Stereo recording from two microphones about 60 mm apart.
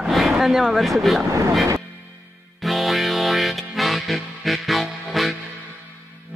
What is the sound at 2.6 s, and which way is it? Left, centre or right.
Music, centre.